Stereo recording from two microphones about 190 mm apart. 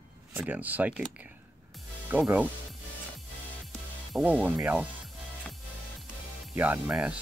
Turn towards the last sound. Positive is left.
turn(degrees=-10)  # may be behind; listen again after turning